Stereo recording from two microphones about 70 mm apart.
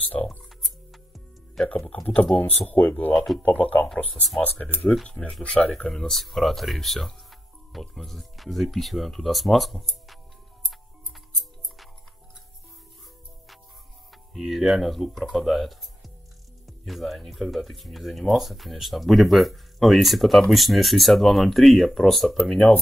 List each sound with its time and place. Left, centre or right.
0.1 s music: left
0.6 s music: centre
2.3 s speech: left; by 10.1 s centre
14.1 s speech: centre